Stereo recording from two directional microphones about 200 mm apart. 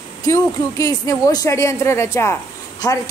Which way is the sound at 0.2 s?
15° left (ahead or behind).